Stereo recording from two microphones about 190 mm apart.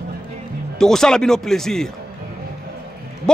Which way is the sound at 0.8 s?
Centre (ahead or behind).